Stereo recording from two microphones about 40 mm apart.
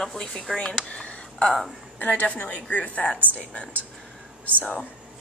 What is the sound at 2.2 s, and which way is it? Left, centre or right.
Speech, left.